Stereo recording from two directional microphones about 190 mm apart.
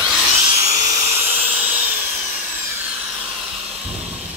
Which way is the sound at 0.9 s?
35° right (ahead or behind).